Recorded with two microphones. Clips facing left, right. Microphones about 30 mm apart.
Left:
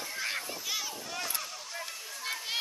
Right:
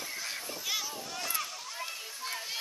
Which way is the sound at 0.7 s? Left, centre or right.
Centre.